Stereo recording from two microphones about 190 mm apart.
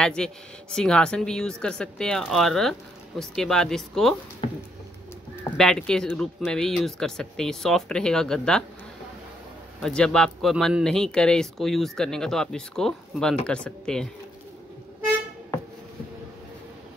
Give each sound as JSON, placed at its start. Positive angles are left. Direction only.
{"t": 0.0, "sound": "a man's voice", "side_deg": 5}
{"t": 5.3, "sound": "a man's voice", "side_deg": 5}
{"t": 9.8, "sound": "a man's voice", "side_deg": 5}